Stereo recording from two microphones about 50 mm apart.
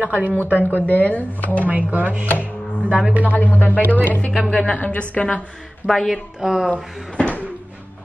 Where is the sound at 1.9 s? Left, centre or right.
Right.